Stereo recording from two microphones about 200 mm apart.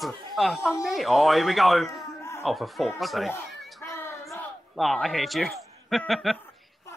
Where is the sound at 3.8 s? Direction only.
10° left (ahead or behind).